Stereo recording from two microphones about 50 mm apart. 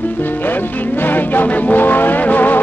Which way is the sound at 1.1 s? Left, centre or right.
Left.